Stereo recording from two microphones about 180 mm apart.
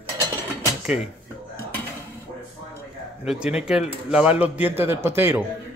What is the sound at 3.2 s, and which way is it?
Speech, 5° right (ahead or behind).